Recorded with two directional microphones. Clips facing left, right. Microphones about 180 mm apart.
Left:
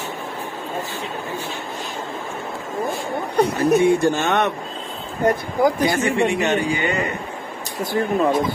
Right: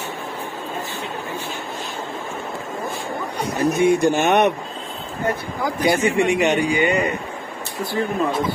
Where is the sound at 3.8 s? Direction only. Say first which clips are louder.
Right 1 dB; 15° right (ahead or behind).